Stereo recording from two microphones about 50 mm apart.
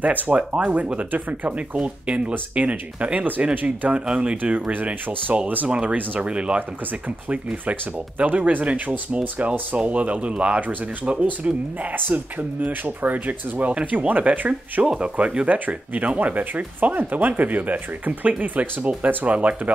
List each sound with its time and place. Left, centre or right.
0.0 s speech: right
1.8 s speech: right